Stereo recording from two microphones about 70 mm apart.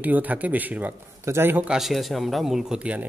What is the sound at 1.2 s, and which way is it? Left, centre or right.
Speech, right.